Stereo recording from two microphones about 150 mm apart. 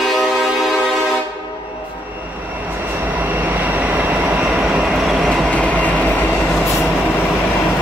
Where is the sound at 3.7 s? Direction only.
10° right (ahead or behind).